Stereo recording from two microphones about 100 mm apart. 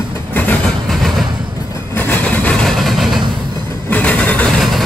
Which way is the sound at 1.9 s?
20° left (ahead or behind).